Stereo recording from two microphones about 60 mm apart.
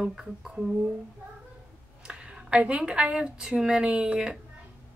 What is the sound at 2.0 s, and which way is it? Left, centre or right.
A woman's voice, centre.